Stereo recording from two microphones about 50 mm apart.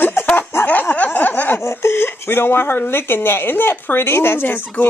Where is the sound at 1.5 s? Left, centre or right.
Left.